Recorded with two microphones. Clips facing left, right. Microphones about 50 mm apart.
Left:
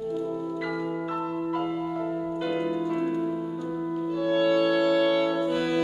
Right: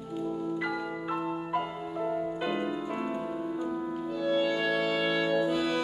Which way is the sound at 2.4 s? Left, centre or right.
Centre.